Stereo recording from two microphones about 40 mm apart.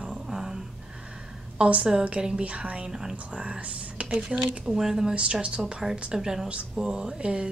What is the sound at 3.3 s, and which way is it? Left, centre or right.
Speech, right.